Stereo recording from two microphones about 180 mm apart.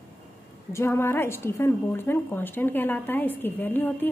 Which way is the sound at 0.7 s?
15° left (ahead or behind).